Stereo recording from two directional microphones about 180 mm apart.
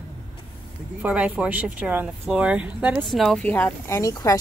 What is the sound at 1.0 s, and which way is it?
Speech, 5° right (ahead or behind).